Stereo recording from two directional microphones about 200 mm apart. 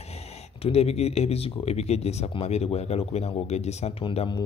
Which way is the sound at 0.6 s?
30° left (ahead or behind).